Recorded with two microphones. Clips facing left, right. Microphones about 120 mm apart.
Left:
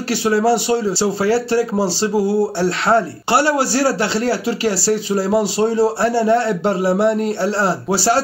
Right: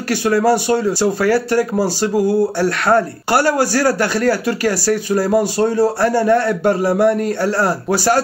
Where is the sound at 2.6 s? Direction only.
25° left (ahead or behind).